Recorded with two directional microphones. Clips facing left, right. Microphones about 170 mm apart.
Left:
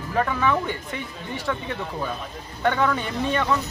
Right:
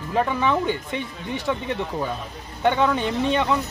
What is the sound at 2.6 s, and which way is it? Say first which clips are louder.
Speech: right 2 dB; 20° right (ahead or behind).